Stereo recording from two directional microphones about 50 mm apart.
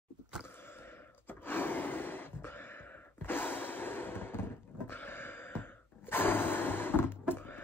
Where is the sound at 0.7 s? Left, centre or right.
Left.